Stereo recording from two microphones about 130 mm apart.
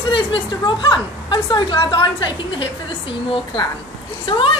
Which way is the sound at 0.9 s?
35° left (ahead or behind).